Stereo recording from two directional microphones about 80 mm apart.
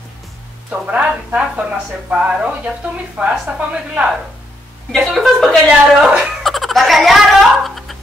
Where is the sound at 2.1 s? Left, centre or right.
Centre.